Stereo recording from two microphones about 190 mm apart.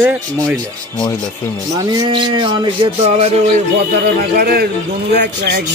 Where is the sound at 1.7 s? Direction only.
20° right (ahead or behind).